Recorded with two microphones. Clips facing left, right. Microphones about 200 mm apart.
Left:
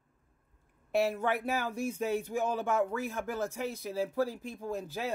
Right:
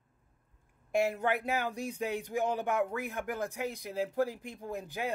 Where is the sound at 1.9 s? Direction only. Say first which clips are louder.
Left 2 dB; 15° right (ahead or behind).